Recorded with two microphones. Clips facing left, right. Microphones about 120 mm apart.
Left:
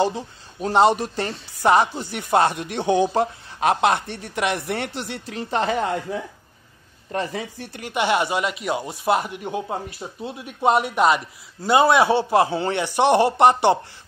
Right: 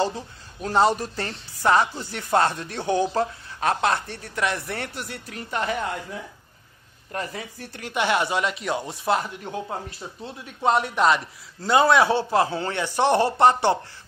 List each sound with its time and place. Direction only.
0.0 s speech: 20° left (ahead or behind)
7.1 s speech: 25° left (ahead or behind)
7.7 s speech: 10° left (ahead or behind)